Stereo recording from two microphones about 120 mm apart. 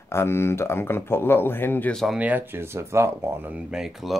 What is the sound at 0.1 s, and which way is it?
Speech, 20° left (ahead or behind).